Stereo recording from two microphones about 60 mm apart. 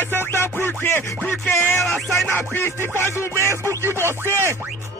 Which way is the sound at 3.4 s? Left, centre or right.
Right.